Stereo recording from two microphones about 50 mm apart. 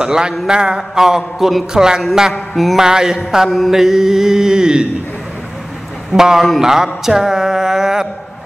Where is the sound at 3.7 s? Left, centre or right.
Centre.